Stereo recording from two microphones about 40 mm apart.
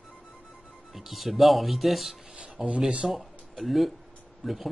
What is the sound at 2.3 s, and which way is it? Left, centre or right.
Rub, right.